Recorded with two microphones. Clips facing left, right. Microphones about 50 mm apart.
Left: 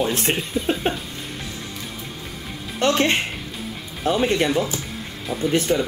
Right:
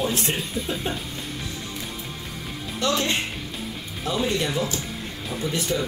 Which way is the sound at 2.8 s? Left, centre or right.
Left.